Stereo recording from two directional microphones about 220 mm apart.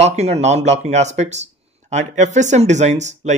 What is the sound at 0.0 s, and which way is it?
Speech, 30° right (ahead or behind).